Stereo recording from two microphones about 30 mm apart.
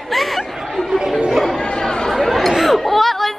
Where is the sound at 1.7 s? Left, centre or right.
Centre.